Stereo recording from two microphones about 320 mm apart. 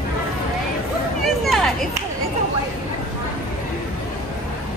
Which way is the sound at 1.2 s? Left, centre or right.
Centre.